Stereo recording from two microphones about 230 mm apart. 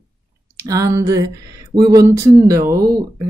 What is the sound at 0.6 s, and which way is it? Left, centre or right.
Speech, centre.